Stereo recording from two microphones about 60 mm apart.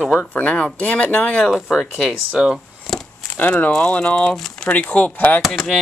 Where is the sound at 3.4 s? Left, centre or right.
Left.